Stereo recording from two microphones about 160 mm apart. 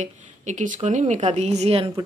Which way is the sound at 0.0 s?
50° right (ahead or behind).